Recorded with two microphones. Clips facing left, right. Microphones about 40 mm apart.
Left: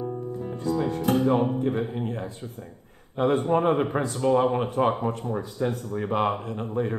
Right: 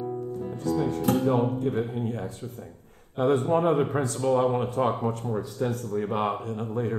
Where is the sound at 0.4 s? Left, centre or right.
Left.